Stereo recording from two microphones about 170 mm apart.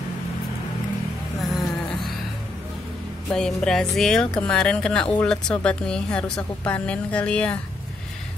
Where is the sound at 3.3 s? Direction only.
5° left (ahead or behind).